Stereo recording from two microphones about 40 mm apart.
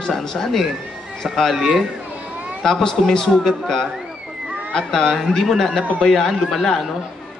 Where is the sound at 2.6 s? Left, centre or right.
Centre.